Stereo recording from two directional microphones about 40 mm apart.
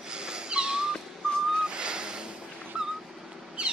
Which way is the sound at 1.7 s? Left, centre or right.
Right.